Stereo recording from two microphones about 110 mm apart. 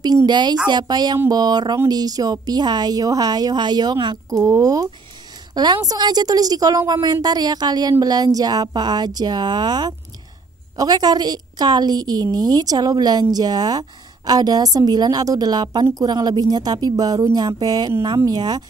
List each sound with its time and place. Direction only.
0.3 s a woman's voice: 40° right (ahead or behind)
4.3 s a woman's voice: 30° right (ahead or behind)